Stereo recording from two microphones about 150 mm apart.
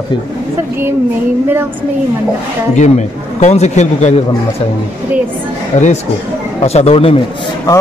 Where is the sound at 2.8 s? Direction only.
50° left (ahead or behind).